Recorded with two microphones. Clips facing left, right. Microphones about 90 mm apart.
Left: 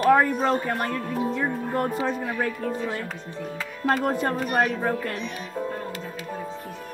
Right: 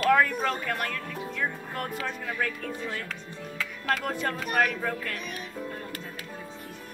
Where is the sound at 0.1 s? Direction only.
30° left (ahead or behind).